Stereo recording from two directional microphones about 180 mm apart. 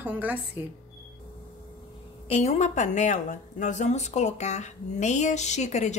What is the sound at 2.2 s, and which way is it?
Speech, 35° left (ahead or behind).